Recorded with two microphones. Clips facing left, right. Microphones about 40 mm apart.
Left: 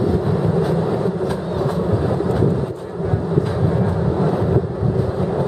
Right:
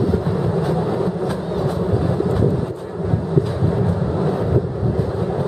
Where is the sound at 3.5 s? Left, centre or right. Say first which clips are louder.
Left 1 dB; centre.